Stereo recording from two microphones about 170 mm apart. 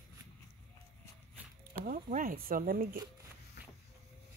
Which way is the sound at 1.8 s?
55° right (ahead or behind).